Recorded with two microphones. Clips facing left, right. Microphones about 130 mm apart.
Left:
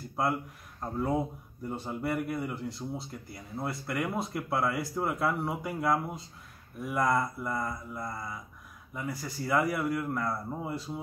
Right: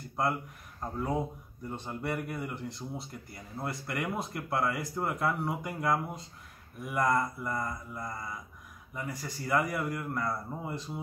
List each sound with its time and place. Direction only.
0.7 s a man's voice: centre (ahead or behind)